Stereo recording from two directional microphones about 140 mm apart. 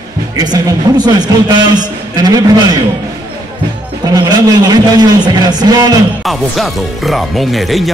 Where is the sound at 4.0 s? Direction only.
30° right (ahead or behind).